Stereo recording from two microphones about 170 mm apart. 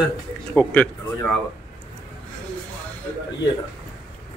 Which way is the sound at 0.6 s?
5° left (ahead or behind).